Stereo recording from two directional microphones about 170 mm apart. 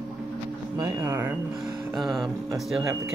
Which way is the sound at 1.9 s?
Centre (ahead or behind).